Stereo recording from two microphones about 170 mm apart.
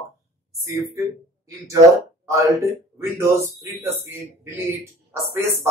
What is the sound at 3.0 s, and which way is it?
Speech, 15° right (ahead or behind).